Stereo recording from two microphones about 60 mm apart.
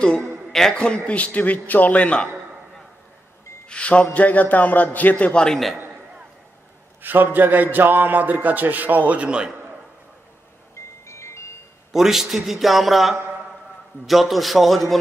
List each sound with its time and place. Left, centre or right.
0.5 s a man's voice: centre
3.6 s a man's voice: centre
5.3 s a man's voice: centre
7.0 s a man's voice: right
11.1 s music: left
11.9 s a man's voice: centre